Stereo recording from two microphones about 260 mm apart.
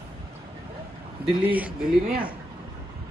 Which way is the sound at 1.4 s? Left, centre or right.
Centre.